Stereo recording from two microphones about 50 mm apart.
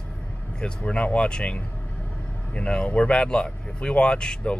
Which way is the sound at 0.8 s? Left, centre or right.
Left.